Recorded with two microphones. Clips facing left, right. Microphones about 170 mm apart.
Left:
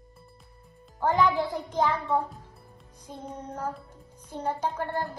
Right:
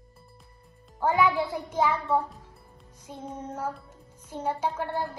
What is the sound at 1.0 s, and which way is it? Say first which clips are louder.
A woman's voice: even; 10° right (ahead or behind).